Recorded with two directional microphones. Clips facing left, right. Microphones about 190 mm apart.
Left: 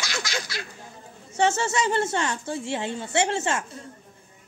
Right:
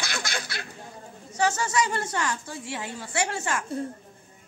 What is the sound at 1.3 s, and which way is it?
A woman's voice, 25° left (ahead or behind).